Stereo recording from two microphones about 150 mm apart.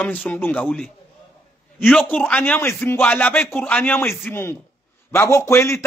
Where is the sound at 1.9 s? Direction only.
10° left (ahead or behind).